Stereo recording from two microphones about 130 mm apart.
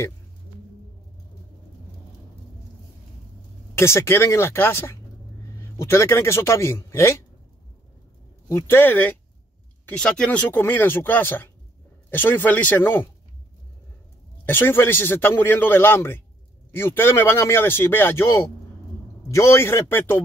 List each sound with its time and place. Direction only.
3.7 s a man's voice: 20° left (ahead or behind)
8.5 s a man's voice: 20° left (ahead or behind)
14.4 s a man's voice: 15° left (ahead or behind)